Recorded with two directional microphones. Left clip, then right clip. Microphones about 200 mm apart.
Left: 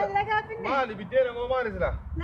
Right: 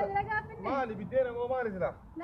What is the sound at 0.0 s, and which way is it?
A man's voice, 5° left (ahead or behind).